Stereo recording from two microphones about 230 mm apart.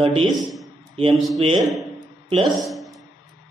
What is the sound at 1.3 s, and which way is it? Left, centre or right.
Speech, right.